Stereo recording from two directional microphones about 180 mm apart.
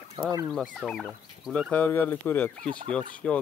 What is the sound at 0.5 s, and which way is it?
Speech, centre (ahead or behind).